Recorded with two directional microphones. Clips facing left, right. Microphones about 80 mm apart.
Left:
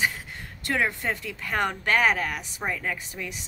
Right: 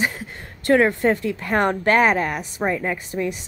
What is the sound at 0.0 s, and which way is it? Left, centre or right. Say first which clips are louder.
Speech: right 3 dB; right.